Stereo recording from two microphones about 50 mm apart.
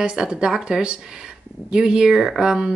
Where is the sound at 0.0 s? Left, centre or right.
Centre.